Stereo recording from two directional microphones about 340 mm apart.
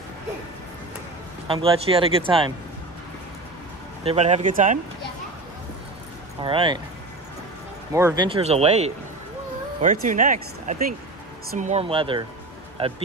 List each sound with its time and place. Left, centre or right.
1.5 s speech: centre
4.0 s speech: centre
6.4 s speech: centre
7.9 s speech: centre
10.0 s speech: right